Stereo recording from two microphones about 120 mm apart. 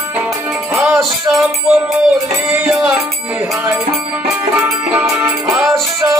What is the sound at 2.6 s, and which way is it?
Music, 5° right (ahead or behind).